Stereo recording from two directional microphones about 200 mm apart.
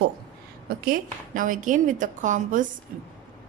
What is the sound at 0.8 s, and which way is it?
A woman's voice, 45° right (ahead or behind).